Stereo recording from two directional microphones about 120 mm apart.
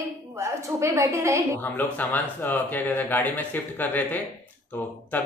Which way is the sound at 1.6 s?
15° left (ahead or behind).